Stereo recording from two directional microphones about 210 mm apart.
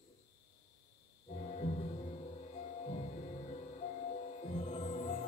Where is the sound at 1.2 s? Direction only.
35° left (ahead or behind).